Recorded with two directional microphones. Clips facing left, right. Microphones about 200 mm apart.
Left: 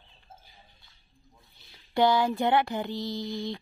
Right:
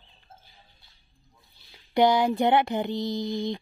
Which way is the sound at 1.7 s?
15° right (ahead or behind).